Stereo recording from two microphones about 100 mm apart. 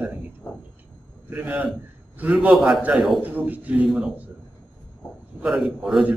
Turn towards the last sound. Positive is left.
turn(degrees=-5)  # may be behind; listen again after turning